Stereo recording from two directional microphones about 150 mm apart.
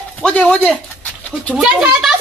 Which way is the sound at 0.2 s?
10° left (ahead or behind).